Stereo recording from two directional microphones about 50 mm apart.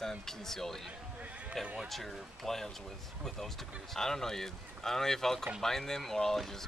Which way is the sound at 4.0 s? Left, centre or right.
Centre.